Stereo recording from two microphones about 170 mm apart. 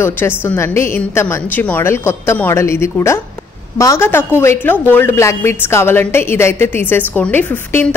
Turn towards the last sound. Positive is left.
turn(degrees=10)  # may be behind; listen again after turning